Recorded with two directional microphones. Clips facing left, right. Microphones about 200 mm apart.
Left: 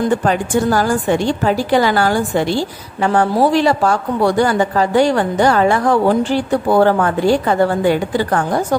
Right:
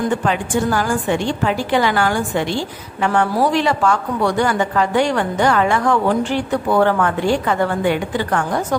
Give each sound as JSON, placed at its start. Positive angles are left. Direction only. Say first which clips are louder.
{"t": 0.2, "sound": "a woman's voice", "louder": "left 3 dB", "side_deg": 40}